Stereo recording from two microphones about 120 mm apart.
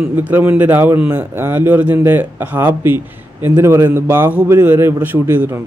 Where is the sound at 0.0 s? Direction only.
10° right (ahead or behind).